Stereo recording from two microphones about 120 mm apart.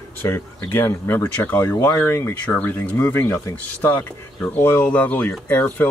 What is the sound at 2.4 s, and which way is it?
Speech, 10° left (ahead or behind).